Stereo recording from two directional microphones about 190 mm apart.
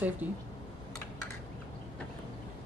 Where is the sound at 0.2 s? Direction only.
10° right (ahead or behind).